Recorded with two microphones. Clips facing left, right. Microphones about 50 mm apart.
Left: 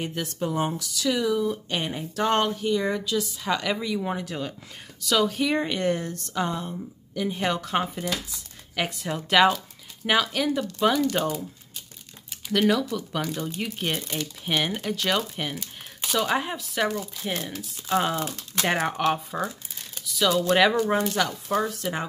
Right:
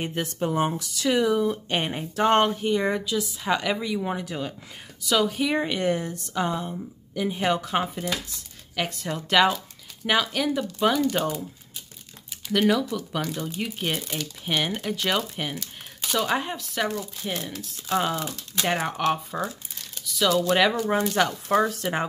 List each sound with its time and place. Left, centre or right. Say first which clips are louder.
0.0 s speech: right 2 dB; right
3.1 s speech: right 1 dB; centre
18.3 s speech: left 1 dB; left
18.7 s speech: left 1 dB; centre
20.8 s speech: even; centre
21.3 s speech: right 4 dB; right